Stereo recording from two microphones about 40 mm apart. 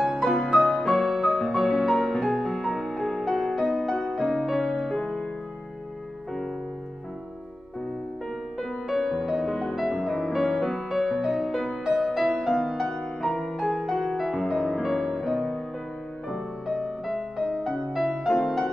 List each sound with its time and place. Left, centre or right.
0.0 s music: centre
2.2 s music: centre
3.5 s music: centre
3.8 s music: centre
8.5 s music: centre
11.5 s music: centre
12.8 s music: centre
16.6 s music: centre